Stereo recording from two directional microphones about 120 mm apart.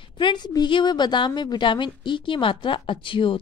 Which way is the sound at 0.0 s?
40° left (ahead or behind).